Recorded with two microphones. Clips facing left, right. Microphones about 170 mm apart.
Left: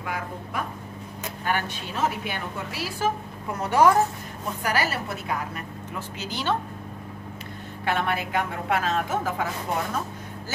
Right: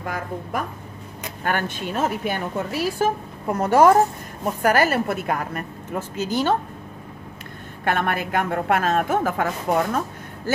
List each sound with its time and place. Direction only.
0.0 s a woman's voice: 45° right (ahead or behind)
7.8 s a woman's voice: 50° right (ahead or behind)